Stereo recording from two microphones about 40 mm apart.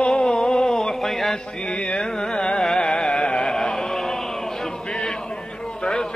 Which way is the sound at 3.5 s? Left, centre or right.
Centre.